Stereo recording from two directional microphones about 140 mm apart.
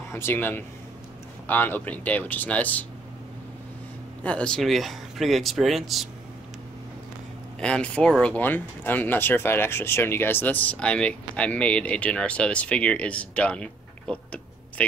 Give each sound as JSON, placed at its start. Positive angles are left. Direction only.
{"t": 0.1, "sound": "speech", "side_deg": 15}
{"t": 4.2, "sound": "speech", "side_deg": 10}
{"t": 7.6, "sound": "speech", "side_deg": 10}